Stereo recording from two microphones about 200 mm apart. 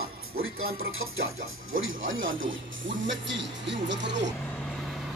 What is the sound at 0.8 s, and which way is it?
Music, 90° right.